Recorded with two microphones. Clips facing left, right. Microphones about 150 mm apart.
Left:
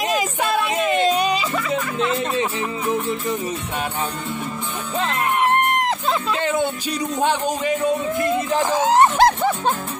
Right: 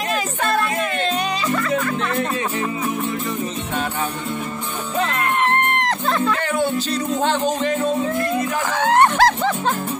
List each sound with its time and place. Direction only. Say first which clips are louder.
0.1 s a sound: right 2 dB; 5° left (ahead or behind)
0.7 s music: left 4 dB; 15° left (ahead or behind)
5.5 s music: left 1 dB; 10° left (ahead or behind)
7.2 s speech: even; 10° left (ahead or behind)